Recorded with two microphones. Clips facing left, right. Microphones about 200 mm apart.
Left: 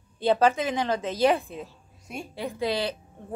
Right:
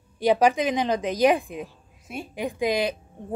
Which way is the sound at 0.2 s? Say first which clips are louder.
Right 2 dB; 15° right (ahead or behind).